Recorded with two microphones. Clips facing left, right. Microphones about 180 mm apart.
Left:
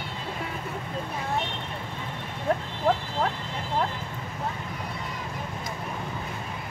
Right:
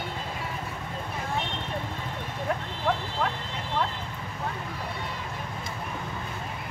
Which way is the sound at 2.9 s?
40° left (ahead or behind).